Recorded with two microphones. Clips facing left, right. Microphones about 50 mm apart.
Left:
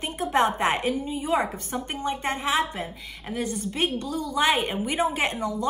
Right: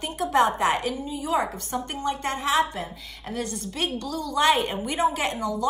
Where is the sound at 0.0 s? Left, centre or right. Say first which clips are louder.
Right 1 dB; left.